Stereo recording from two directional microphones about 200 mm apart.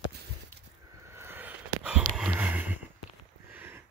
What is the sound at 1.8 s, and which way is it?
Sniff, 5° right (ahead or behind).